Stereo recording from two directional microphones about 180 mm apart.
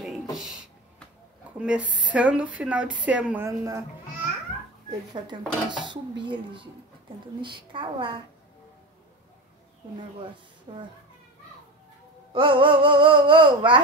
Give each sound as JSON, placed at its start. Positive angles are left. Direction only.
{"t": 0.4, "sound": "a sound", "side_deg": 0}
{"t": 1.6, "sound": "speech", "side_deg": -5}
{"t": 5.1, "sound": "dishes", "side_deg": -25}
{"t": 10.7, "sound": "dishes", "side_deg": -30}
{"t": 12.3, "sound": "dishes", "side_deg": -30}